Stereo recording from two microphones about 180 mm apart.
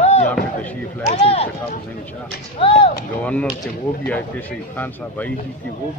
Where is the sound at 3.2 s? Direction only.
5° left (ahead or behind).